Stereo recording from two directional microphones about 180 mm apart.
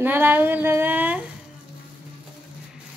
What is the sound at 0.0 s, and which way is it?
Speech, 10° right (ahead or behind).